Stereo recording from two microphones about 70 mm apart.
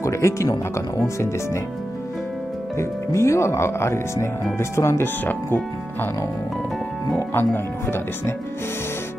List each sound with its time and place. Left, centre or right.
0.0 s speech: left
2.8 s speech: left
5.0 s speech: left
7.3 s speech: left